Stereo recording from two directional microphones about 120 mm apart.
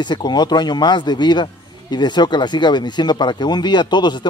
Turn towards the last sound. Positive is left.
turn(degrees=40)  # may be behind; listen again after turning